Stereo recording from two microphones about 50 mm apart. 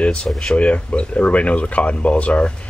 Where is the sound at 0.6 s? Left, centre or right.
Left.